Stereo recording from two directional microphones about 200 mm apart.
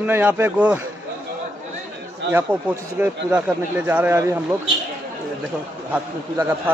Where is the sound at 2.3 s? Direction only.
10° right (ahead or behind).